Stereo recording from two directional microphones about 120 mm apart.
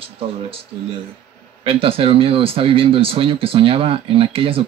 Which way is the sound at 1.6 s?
50° right (ahead or behind).